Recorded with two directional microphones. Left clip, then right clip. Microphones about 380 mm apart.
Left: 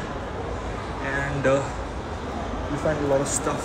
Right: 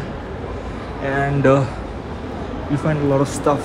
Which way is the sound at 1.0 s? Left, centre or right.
Centre.